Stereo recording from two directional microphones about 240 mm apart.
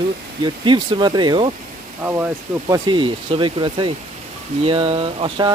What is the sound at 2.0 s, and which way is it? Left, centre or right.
Speech, centre.